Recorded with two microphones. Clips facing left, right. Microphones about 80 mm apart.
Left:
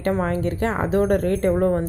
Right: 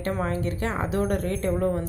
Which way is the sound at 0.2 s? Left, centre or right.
Left.